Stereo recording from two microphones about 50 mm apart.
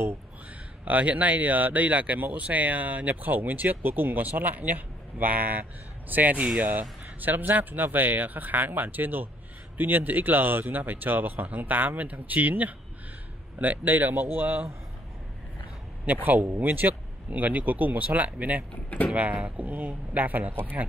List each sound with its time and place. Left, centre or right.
0.8 s speech: right
16.3 s speech: right